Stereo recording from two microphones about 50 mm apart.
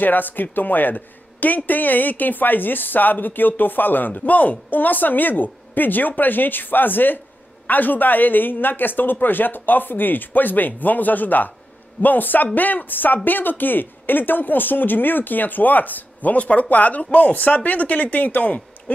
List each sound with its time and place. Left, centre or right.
0.0 s speech: left